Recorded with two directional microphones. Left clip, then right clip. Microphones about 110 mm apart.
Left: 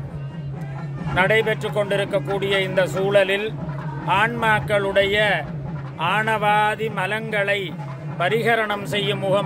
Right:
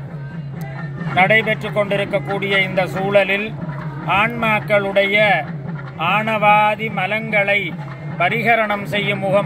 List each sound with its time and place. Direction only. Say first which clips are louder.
1.1 s speech: right 4 dB; 45° left (ahead or behind)